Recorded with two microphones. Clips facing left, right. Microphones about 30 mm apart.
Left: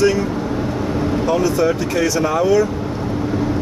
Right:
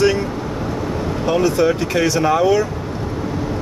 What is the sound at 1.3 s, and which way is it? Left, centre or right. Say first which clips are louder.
Speech: right 2 dB; right.